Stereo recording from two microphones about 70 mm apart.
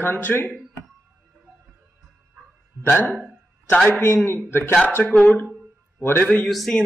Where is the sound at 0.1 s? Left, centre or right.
Left.